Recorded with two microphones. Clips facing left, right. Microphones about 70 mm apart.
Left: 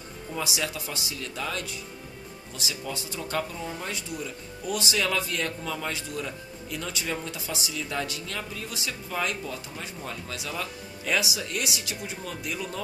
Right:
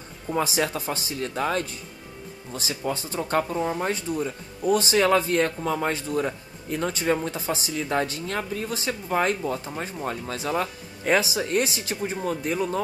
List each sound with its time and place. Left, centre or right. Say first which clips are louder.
0.3 s speech: right 7 dB; right